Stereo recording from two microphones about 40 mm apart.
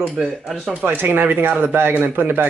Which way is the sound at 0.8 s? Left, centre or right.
Right.